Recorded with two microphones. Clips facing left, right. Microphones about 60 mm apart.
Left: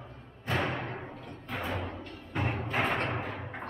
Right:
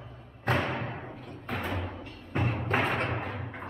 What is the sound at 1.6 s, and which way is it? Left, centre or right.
Music, centre.